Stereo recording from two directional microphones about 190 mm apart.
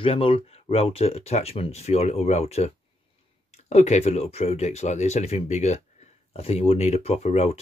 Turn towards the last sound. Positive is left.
turn(degrees=35)  # may be behind; listen again after turning